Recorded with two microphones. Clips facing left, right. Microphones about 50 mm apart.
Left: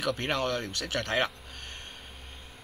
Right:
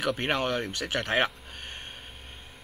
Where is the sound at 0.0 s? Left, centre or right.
Right.